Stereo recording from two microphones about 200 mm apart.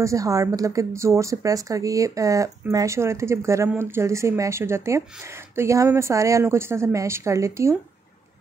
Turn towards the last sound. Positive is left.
turn(degrees=-15)  # may be behind; listen again after turning